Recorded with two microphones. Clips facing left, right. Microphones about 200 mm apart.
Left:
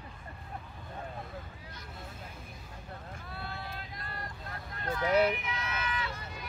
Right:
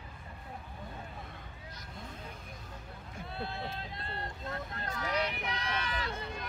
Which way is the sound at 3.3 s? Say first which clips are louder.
Right 4 dB; 25° right (ahead or behind).